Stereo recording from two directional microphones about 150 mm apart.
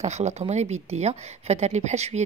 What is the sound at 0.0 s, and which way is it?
A woman's voice, 50° right (ahead or behind).